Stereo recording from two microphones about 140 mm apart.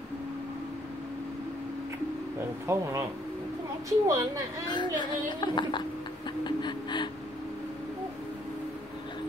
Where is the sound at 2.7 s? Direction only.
20° right (ahead or behind).